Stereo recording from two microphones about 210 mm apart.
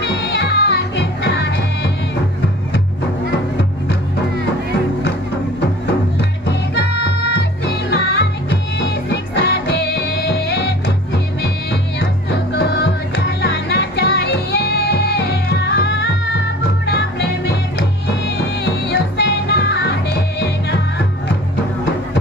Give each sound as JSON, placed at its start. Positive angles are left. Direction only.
{"t": 0.0, "sound": "music", "side_deg": 55}
{"t": 6.1, "sound": "music", "side_deg": 55}
{"t": 17.5, "sound": "music", "side_deg": 55}